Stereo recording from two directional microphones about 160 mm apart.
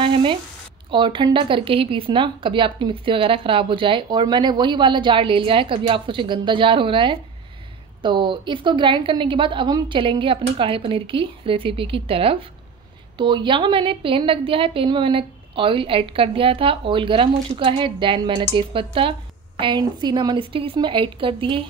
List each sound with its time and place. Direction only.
0.0 s sizzle: 35° right (ahead or behind)
0.8 s speech: 30° right (ahead or behind)